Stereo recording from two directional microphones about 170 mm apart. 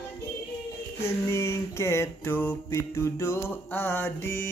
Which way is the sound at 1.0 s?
15° left (ahead or behind).